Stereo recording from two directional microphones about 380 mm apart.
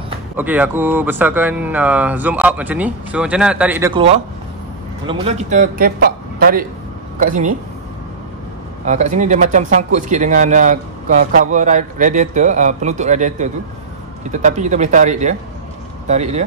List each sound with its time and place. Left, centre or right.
0.1 s speech: centre
8.8 s a man's voice: centre